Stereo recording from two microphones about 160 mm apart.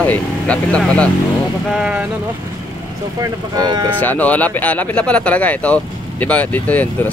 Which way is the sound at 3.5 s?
25° right (ahead or behind).